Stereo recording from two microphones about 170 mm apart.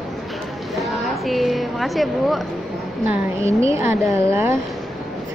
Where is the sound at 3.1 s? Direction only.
15° right (ahead or behind).